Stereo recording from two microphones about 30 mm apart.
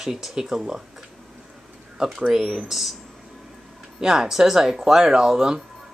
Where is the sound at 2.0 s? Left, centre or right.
Centre.